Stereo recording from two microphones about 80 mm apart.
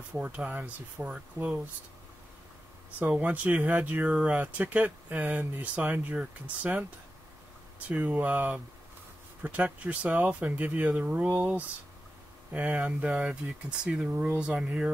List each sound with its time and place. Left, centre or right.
0.1 s speech: centre
3.0 s speech: centre
7.9 s speech: centre